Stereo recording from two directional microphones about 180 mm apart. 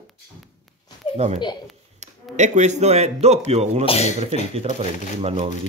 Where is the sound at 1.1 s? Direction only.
35° right (ahead or behind).